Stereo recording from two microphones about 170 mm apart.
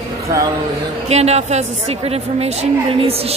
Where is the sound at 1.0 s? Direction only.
40° right (ahead or behind).